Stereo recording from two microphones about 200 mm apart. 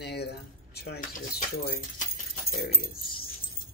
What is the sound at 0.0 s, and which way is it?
Keys jangling, 55° left (ahead or behind).